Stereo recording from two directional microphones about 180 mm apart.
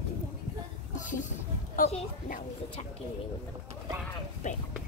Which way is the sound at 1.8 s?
45° left (ahead or behind).